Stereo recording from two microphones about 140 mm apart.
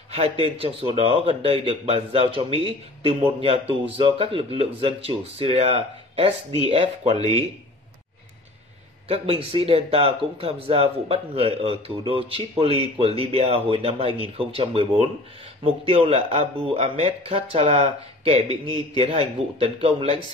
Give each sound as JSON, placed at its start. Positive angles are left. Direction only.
{"t": 0.1, "sound": "speech", "side_deg": -45}
{"t": 9.1, "sound": "speech", "side_deg": -45}